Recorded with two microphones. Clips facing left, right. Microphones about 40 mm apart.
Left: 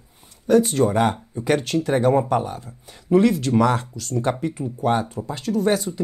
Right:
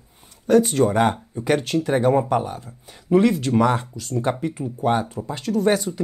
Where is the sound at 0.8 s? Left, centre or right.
Right.